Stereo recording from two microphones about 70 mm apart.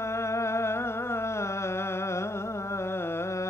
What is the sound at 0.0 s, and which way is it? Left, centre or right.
Music, left.